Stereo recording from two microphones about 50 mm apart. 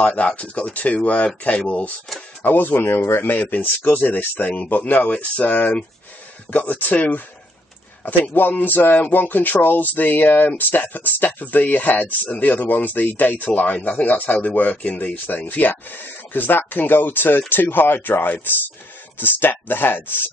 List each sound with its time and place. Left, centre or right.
0.0 s speech: left
2.4 s speech: left